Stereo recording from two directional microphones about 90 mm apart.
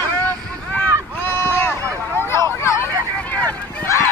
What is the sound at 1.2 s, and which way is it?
Run, 25° left (ahead or behind).